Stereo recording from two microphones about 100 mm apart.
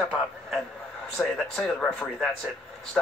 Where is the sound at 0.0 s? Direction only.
Centre (ahead or behind).